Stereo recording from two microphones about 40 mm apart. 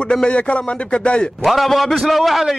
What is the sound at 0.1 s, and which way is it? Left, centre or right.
A man's voice, left.